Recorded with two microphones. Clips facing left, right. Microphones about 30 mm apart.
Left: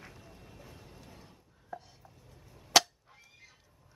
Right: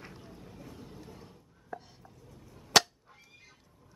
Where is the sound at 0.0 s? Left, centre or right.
Right.